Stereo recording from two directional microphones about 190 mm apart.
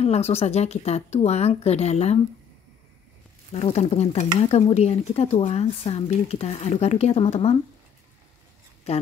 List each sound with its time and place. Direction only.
0.0 s speech: 35° left (ahead or behind)
3.5 s speech: 35° left (ahead or behind)
8.9 s speech: 35° left (ahead or behind)